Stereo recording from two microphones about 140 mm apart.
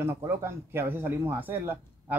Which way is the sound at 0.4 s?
15° right (ahead or behind).